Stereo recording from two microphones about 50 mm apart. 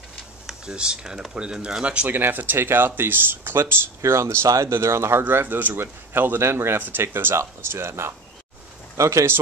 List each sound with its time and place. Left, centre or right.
0.7 s speech: centre
2.0 s speech: right
4.0 s speech: right
5.3 s speech: right
6.8 s speech: right
8.9 s speech: right